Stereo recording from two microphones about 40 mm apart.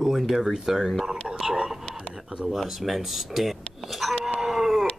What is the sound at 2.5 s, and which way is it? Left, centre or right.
Speech, centre.